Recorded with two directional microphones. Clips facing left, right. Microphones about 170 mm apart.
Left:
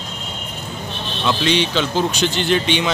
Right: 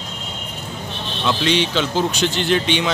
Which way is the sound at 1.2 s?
Centre (ahead or behind).